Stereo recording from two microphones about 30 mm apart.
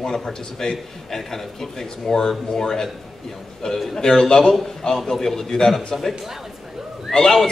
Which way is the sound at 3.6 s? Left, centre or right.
Left.